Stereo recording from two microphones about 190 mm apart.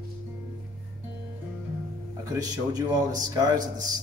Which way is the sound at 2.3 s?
20° right (ahead or behind).